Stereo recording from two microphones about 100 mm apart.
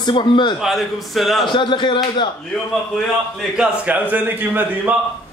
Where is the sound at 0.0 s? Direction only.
50° left (ahead or behind).